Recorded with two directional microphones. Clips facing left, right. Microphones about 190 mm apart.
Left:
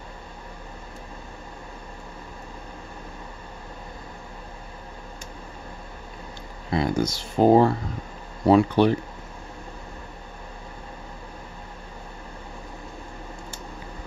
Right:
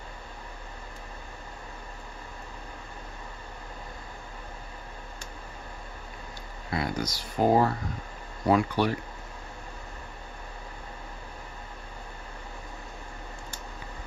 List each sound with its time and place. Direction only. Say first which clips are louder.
6.7 s speech: left 7 dB; 25° left (ahead or behind)